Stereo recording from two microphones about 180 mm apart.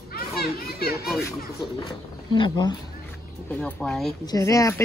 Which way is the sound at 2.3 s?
25° left (ahead or behind).